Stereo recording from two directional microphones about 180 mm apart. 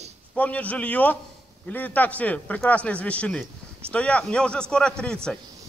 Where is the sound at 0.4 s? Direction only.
10° left (ahead or behind).